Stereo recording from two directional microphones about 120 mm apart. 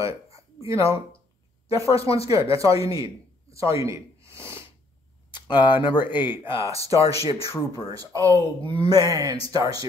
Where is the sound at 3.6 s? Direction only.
25° right (ahead or behind).